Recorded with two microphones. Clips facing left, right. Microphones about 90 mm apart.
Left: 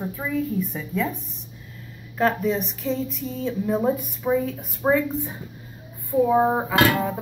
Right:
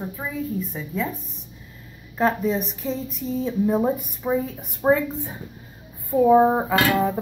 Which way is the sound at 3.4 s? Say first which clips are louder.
Right 2 dB; 15° right (ahead or behind).